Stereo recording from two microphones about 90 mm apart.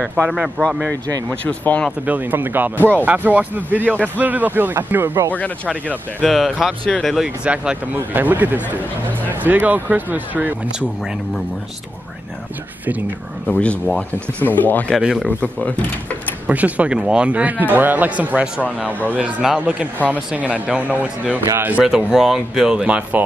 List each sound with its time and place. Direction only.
0.6 s speech: 20° left (ahead or behind)
1.9 s speech: 20° right (ahead or behind)
5.3 s speech: 15° left (ahead or behind)
6.2 s speech: centre (ahead or behind)
7.4 s speech: 15° right (ahead or behind)
13.5 s speech: 15° left (ahead or behind)
15.0 s a man's voice: 10° right (ahead or behind)
15.4 s speech: 15° left (ahead or behind)
16.4 s a man's voice: 15° right (ahead or behind)
21.8 s a man's voice: 5° right (ahead or behind)